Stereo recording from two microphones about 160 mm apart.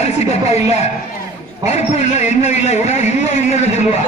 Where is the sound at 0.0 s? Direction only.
40° left (ahead or behind).